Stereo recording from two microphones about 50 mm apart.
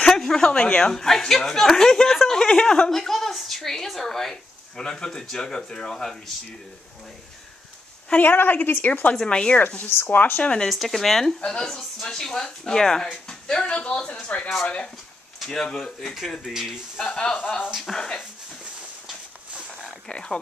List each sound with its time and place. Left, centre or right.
0.1 s a sound: centre
0.4 s speech: left; by 2.4 s centre
2.4 s a woman's voice: centre
8.1 s a woman's voice: left
8.8 s speech: left
9.3 s speech: centre
10.0 s a woman's voice: left
10.4 s speech: left
10.7 s speech: centre; by 14.5 s left
15.3 s speech: centre
16.4 s speech: centre
17.0 s speech: centre
19.7 s a sound: centre